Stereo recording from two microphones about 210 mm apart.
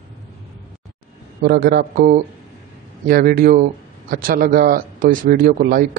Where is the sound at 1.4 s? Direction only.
45° right (ahead or behind).